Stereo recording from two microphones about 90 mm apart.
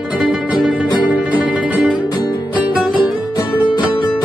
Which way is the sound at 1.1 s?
15° right (ahead or behind).